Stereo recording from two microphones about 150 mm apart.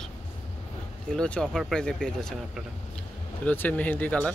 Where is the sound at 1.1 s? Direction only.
5° left (ahead or behind).